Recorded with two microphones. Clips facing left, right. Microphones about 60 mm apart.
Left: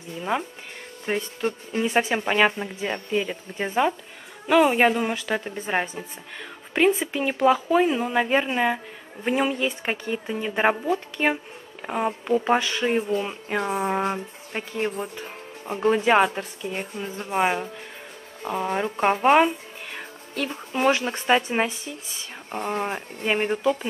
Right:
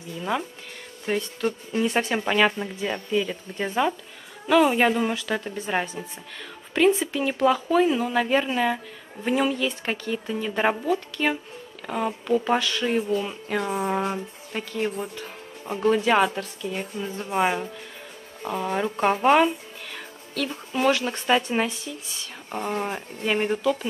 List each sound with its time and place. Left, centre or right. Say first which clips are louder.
0.2 s speech: left 1 dB; centre
7.1 s speech: left 1 dB; centre
9.6 s speech: left 1 dB; left